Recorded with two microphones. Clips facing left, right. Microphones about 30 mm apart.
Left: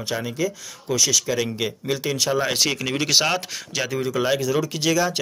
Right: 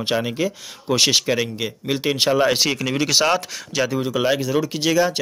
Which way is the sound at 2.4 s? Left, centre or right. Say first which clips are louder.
Right 3 dB; centre.